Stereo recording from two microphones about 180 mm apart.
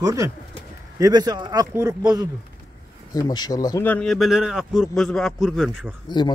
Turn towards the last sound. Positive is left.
turn(degrees=25)  # may be behind; listen again after turning